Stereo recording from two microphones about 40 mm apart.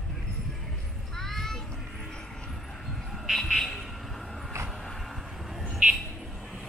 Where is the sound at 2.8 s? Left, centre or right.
Centre.